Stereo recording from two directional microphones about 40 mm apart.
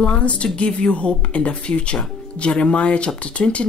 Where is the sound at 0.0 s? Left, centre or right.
Left.